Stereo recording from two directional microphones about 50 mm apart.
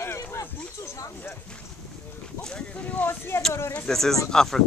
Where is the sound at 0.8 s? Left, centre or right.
Left.